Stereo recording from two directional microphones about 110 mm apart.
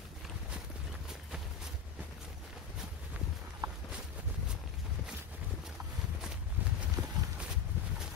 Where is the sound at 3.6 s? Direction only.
40° right (ahead or behind).